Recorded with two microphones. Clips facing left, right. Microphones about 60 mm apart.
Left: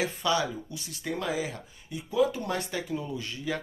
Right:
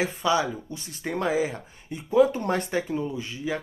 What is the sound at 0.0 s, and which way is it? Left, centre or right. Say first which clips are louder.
Speech: right 4 dB; right.